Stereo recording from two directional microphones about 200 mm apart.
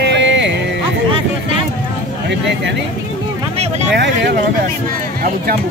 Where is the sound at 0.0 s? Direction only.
60° right (ahead or behind).